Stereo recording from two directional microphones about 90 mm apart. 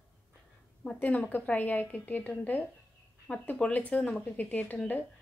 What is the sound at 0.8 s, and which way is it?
A woman's voice, 15° left (ahead or behind).